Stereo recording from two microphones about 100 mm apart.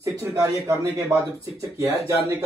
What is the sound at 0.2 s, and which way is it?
A man's voice, 30° right (ahead or behind).